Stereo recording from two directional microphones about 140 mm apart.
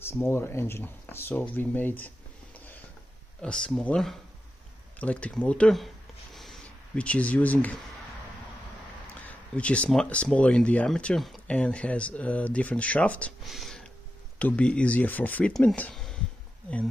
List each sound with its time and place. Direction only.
0.0 s speech: 15° left (ahead or behind)
3.4 s speech: 5° left (ahead or behind)
6.3 s a sound: centre (ahead or behind)
9.2 s speech: 10° left (ahead or behind)
13.4 s a sound: centre (ahead or behind)
14.4 s speech: 10° left (ahead or behind)